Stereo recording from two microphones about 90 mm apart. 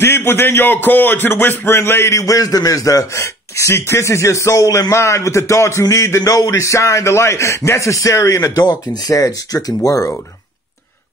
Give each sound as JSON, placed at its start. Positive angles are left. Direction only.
{"t": 0.0, "sound": "speech", "side_deg": 25}